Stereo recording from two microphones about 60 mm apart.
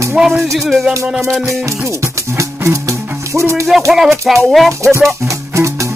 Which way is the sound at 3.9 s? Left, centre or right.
Centre.